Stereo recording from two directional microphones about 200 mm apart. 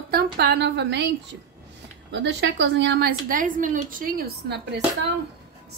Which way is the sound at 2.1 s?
60° right (ahead or behind).